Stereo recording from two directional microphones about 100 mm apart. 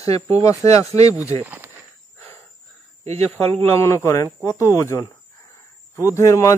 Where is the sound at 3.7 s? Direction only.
30° left (ahead or behind).